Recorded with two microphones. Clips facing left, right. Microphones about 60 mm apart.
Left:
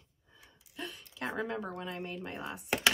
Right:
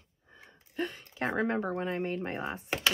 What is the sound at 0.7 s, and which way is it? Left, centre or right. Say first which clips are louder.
Speech: right 8 dB; right.